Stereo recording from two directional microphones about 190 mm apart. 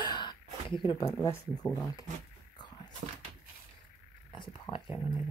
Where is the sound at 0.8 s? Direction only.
20° left (ahead or behind).